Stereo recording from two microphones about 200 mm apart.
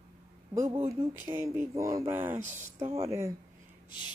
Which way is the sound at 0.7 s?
30° right (ahead or behind).